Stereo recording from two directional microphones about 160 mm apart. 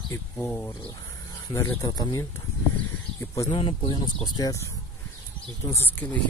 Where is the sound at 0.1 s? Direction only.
15° left (ahead or behind).